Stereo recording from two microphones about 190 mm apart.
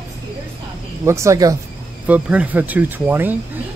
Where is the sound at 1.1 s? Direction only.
15° right (ahead or behind).